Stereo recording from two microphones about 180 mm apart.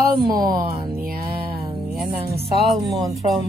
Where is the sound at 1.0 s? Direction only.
55° right (ahead or behind).